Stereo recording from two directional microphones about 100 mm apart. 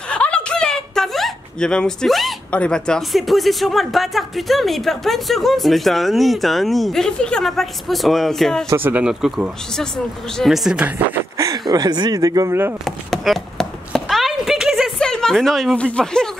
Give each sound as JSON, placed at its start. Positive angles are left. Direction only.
{"t": 0.1, "sound": "a sound", "side_deg": 10}
{"t": 2.5, "sound": "speech", "side_deg": 10}
{"t": 8.7, "sound": "speech", "side_deg": -20}
{"t": 9.0, "sound": "speech", "side_deg": -5}
{"t": 9.8, "sound": "speech", "side_deg": 5}
{"t": 11.0, "sound": "speech", "side_deg": -15}
{"t": 11.3, "sound": "a sound", "side_deg": -35}
{"t": 11.7, "sound": "speech", "side_deg": -40}
{"t": 12.8, "sound": "a sound", "side_deg": 0}